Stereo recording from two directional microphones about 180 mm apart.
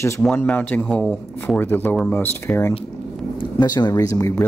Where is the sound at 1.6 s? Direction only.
10° left (ahead or behind).